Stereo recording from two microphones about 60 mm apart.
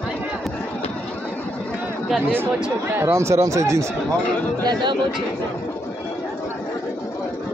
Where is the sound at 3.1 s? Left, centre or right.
Right.